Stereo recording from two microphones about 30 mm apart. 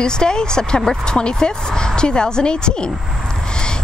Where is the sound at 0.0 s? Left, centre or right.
Left.